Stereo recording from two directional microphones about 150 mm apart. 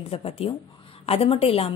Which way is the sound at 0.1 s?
40° left (ahead or behind).